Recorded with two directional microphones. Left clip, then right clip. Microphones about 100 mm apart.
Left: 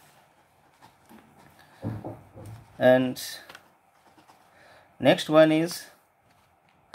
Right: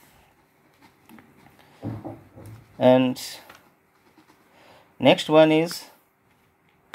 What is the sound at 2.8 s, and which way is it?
Speech, 20° right (ahead or behind).